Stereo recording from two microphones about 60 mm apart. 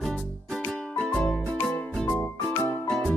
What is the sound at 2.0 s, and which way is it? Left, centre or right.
Music, left.